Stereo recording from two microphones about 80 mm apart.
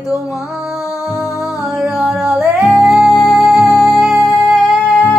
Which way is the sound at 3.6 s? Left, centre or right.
Left.